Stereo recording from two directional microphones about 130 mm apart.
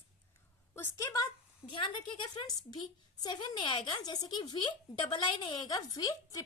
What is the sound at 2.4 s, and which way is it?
A woman's voice, 30° left (ahead or behind).